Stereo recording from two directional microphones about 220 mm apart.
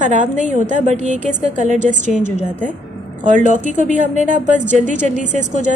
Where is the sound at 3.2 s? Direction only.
35° right (ahead or behind).